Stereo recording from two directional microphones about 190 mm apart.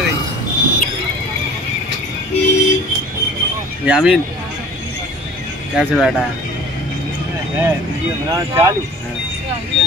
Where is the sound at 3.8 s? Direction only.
5° right (ahead or behind).